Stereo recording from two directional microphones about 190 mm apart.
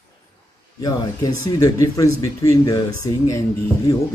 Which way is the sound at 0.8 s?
20° left (ahead or behind).